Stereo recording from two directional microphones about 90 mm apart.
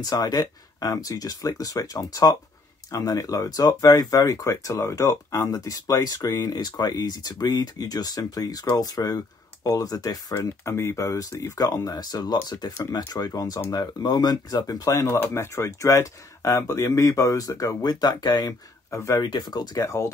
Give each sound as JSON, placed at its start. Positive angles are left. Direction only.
{"t": 0.0, "sound": "speech", "side_deg": 45}
{"t": 10.4, "sound": "speech", "side_deg": 30}
{"t": 18.9, "sound": "speech", "side_deg": 30}
{"t": 19.2, "sound": "speech", "side_deg": 55}